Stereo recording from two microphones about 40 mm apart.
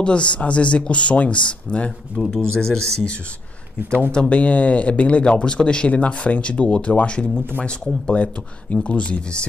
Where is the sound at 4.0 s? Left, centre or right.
Left.